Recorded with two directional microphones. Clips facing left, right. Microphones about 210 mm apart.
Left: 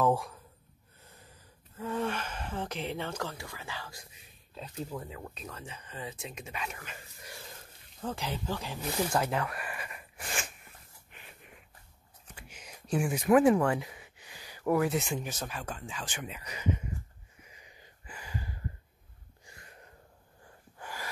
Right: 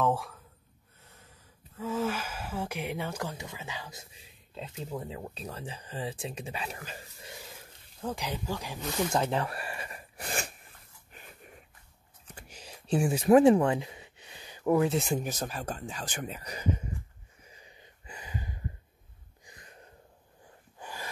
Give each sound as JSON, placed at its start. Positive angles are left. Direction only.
{"t": 0.0, "sound": "speech", "side_deg": 0}
{"t": 8.0, "sound": "speech", "side_deg": -15}
{"t": 9.1, "sound": "a sound", "side_deg": -25}
{"t": 11.1, "sound": "snort", "side_deg": -40}
{"t": 12.4, "sound": "a sound", "side_deg": -35}
{"t": 15.0, "sound": "speech", "side_deg": -40}
{"t": 17.5, "sound": "a sound", "side_deg": -30}
{"t": 19.4, "sound": "wheeze", "side_deg": -20}
{"t": 20.8, "sound": "gasp", "side_deg": -20}